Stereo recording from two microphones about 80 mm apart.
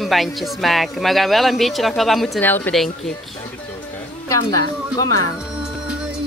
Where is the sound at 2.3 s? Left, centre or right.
Left.